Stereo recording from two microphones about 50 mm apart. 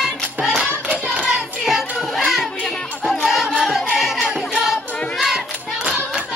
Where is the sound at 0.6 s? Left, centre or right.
Centre.